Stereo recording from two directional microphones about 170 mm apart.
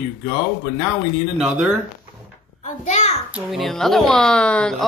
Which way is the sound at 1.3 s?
5° right (ahead or behind).